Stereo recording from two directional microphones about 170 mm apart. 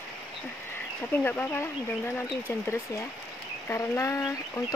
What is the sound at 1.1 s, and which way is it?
Speech, 10° left (ahead or behind).